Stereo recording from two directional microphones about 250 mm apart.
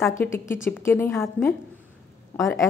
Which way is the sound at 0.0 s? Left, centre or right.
Centre.